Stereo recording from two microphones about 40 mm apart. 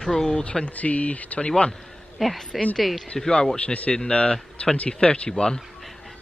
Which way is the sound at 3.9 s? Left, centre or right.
Left.